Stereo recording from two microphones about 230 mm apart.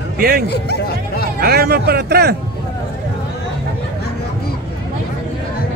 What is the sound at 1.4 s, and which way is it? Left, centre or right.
Speech, right.